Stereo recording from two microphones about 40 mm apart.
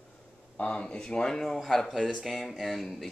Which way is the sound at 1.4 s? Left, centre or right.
Centre.